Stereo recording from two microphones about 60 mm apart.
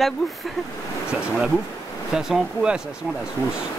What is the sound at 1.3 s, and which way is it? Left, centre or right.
Speech, centre.